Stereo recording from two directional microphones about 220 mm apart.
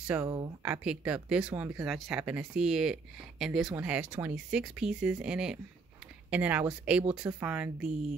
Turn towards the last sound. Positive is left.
turn(degrees=-5)  # may be behind; listen again after turning